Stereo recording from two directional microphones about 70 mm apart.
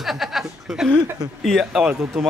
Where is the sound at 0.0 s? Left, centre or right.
Centre.